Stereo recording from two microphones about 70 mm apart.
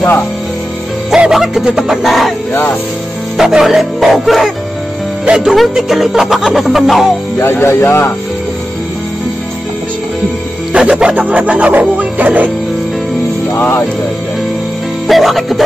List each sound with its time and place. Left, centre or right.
1.1 s speech: centre
3.3 s speech: centre
5.2 s speech: centre
5.5 s speech: centre
7.6 s speech: left
10.7 s music: centre
13.6 s music: left
15.0 s speech: centre